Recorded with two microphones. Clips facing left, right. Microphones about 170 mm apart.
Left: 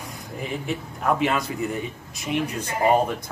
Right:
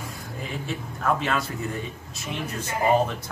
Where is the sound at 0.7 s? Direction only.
15° left (ahead or behind).